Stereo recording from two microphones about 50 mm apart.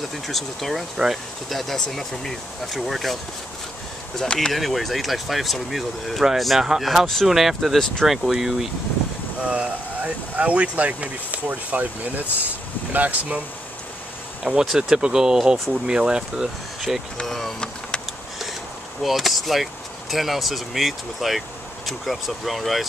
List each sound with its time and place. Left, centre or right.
0.3 s speech: centre
4.2 s speech: centre
4.5 s speech: centre
9.4 s speech: right
14.4 s speech: centre
15.7 s speech: centre
17.3 s vehicle: centre
19.0 s speech: centre